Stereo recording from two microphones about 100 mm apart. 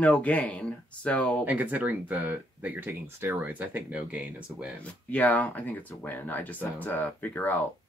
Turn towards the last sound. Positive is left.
turn(degrees=15)  # may be behind; listen again after turning